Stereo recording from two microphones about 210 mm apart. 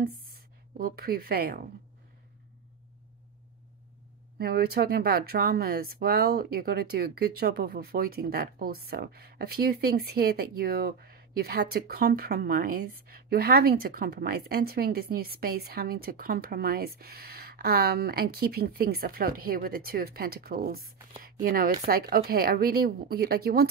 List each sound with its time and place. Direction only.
0.0 s music: 45° right (ahead or behind)
4.4 s speech: 45° right (ahead or behind)